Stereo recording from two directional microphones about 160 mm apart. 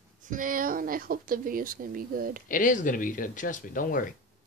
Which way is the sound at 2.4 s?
55° left (ahead or behind).